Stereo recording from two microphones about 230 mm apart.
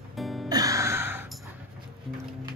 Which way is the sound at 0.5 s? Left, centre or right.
Centre.